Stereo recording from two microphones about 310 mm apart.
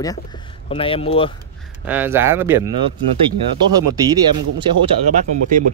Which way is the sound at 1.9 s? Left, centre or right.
Centre.